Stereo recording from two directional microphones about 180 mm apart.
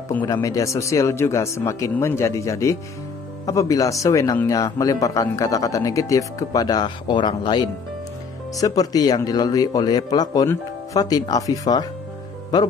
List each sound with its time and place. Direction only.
0.2 s speech: 20° left (ahead or behind)